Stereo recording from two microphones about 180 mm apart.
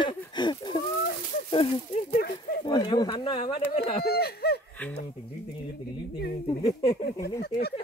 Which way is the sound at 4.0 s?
60° left (ahead or behind).